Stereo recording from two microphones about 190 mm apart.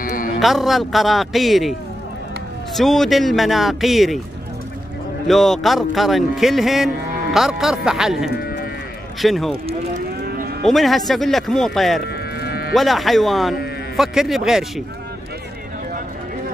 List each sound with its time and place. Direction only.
0.0 s music: 45° left (ahead or behind)
0.4 s speech: centre (ahead or behind)
5.3 s speech: centre (ahead or behind)
10.2 s moo: 50° right (ahead or behind)
10.6 s speech: centre (ahead or behind)
12.4 s a sound: 55° left (ahead or behind)
12.7 s speech: centre (ahead or behind)